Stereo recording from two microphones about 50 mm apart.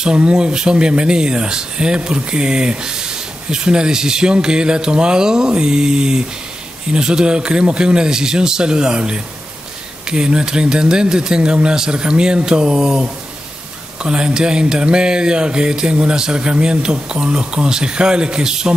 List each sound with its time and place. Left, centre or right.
0.0 s speech: centre
14.0 s speech: centre